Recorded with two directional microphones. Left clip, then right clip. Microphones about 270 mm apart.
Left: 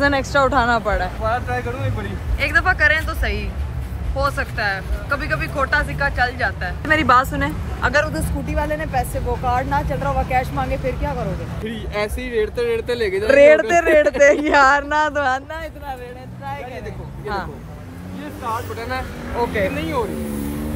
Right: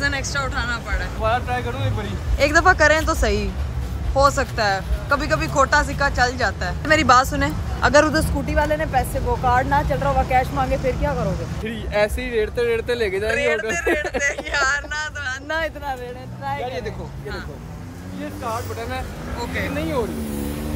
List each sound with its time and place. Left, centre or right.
0.0 s speech: centre
1.2 s speech: centre
13.3 s speech: centre
16.4 s speech: centre
18.2 s speech: centre